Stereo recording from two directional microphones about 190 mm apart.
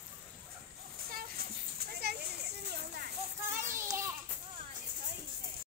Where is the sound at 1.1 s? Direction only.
50° right (ahead or behind).